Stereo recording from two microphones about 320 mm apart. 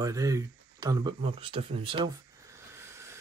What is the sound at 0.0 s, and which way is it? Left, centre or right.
Speech, centre.